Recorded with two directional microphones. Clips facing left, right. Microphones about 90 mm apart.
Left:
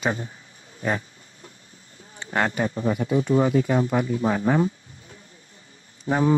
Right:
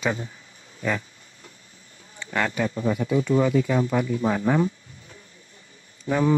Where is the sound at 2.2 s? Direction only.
40° left (ahead or behind).